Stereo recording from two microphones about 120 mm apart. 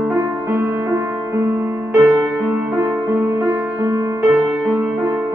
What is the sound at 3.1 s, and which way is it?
Music, 20° right (ahead or behind).